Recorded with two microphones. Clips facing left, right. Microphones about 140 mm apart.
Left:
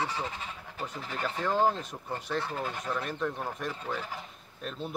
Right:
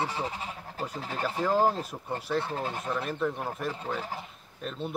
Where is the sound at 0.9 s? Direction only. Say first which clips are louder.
Right 3 dB; 35° right (ahead or behind).